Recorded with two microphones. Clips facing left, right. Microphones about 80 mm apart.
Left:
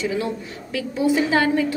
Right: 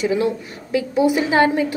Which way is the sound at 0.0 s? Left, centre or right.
Right.